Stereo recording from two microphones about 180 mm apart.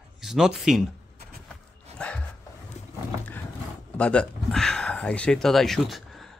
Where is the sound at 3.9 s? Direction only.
5° left (ahead or behind).